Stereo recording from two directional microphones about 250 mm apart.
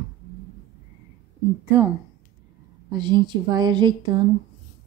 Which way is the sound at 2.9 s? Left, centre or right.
Centre.